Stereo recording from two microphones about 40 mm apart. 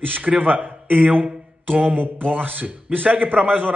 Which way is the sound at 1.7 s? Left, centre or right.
Right.